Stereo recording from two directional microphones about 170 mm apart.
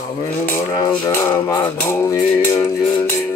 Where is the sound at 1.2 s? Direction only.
20° left (ahead or behind).